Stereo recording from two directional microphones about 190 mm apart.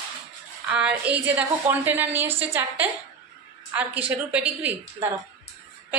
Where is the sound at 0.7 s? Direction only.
5° right (ahead or behind).